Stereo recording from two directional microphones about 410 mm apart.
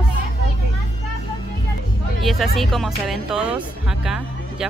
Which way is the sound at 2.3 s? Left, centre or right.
Centre.